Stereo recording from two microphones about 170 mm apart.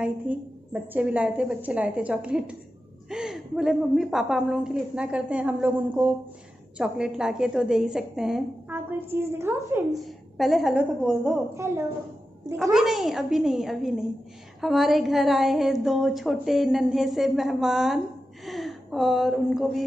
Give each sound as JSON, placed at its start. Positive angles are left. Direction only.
{"t": 0.3, "sound": "a woman's voice", "side_deg": -10}
{"t": 8.7, "sound": "a woman's voice", "side_deg": -15}
{"t": 10.0, "sound": "a woman's voice", "side_deg": 0}
{"t": 11.5, "sound": "a woman's voice", "side_deg": -15}
{"t": 12.7, "sound": "a woman's voice", "side_deg": 0}